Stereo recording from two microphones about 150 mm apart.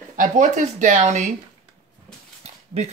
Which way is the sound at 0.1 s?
60° right (ahead or behind).